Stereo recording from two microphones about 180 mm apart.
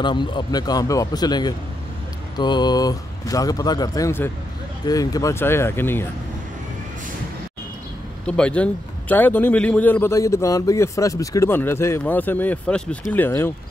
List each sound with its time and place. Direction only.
0.0 s a man's voice: 25° left (ahead or behind)
8.3 s a man's voice: 5° left (ahead or behind)